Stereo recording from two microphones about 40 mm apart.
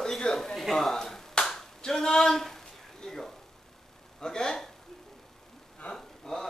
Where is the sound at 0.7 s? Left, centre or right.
Centre.